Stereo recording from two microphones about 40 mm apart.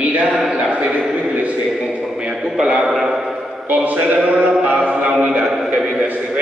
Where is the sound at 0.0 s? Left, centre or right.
Right.